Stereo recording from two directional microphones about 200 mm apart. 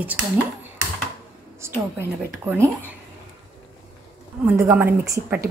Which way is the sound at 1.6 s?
15° right (ahead or behind).